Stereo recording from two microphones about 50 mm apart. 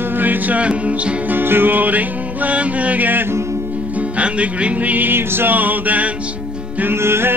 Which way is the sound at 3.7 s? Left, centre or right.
Right.